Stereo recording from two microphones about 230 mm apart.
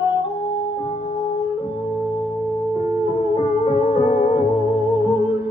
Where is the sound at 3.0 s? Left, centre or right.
Left.